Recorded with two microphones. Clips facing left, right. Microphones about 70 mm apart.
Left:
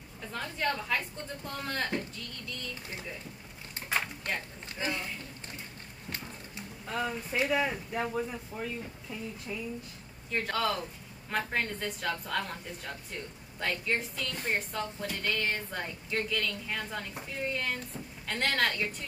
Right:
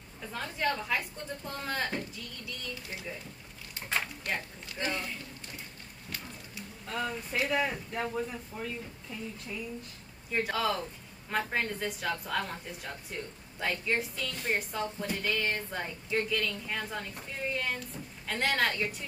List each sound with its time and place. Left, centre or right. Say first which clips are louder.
0.2 s a woman's voice: right 1 dB; centre
4.7 s speech: even; centre
6.0 s music: left 2 dB; left
6.9 s a woman's voice: left 1 dB; centre
10.3 s a woman's voice: right 1 dB; centre